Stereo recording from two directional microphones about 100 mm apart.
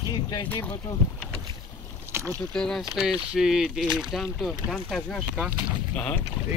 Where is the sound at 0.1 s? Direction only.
40° left (ahead or behind).